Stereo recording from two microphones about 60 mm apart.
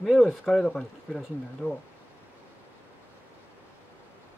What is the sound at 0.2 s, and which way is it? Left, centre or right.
Speech, centre.